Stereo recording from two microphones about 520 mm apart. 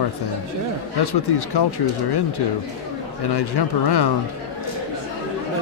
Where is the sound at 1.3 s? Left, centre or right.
Left.